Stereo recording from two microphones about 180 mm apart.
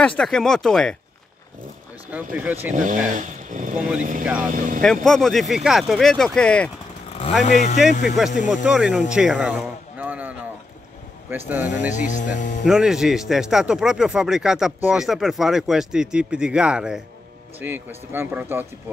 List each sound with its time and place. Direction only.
0.0 s speech: 5° left (ahead or behind)
2.0 s speech: 10° right (ahead or behind)
2.7 s speech: 45° right (ahead or behind)
4.8 s speech: 5° left (ahead or behind)
7.1 s a sound: 35° left (ahead or behind)
7.4 s speech: 40° left (ahead or behind)
8.2 s speech: centre (ahead or behind)
9.1 s a sound: 5° right (ahead or behind)
11.2 s speech: 10° right (ahead or behind)
11.9 s speech: 45° left (ahead or behind)
12.6 s speech: 5° right (ahead or behind)